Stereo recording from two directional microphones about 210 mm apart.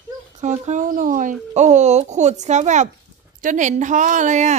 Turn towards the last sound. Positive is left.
turn(degrees=-35)  # may be behind; listen again after turning